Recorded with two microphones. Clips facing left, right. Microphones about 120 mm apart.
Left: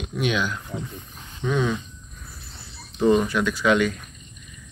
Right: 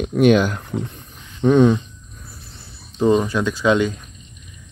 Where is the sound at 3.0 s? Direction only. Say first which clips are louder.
Right 2 dB; 25° right (ahead or behind).